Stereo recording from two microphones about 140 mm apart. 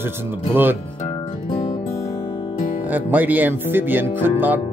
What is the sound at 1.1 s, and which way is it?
Music, 40° left (ahead or behind).